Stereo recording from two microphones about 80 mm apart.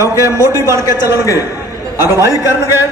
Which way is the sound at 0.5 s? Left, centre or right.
Right.